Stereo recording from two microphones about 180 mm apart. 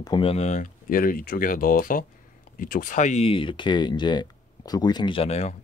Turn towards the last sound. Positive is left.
turn(degrees=35)  # may be behind; listen again after turning